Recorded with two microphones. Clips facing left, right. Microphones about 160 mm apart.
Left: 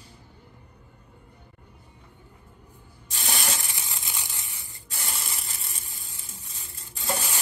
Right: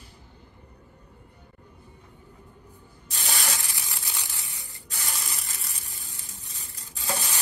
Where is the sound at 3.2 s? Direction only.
20° left (ahead or behind).